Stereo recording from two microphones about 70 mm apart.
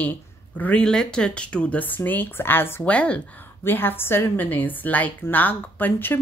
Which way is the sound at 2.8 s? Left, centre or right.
Centre.